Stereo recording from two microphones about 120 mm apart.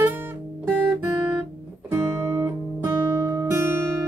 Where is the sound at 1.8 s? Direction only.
20° right (ahead or behind).